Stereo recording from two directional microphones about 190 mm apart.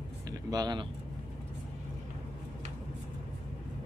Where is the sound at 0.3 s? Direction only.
20° right (ahead or behind).